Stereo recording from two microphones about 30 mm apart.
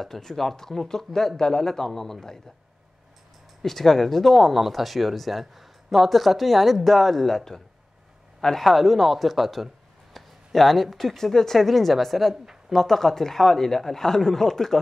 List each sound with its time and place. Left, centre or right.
0.0 s speech: centre
3.6 s speech: centre
8.6 s speech: centre
11.6 s speech: centre